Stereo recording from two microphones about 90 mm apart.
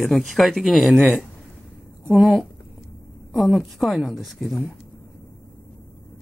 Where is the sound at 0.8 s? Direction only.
20° right (ahead or behind).